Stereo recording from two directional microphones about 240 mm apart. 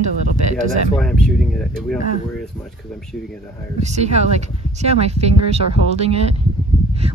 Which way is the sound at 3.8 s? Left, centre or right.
Right.